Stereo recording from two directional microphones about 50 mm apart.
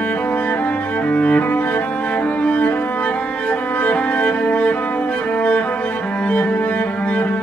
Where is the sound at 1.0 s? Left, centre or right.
Left.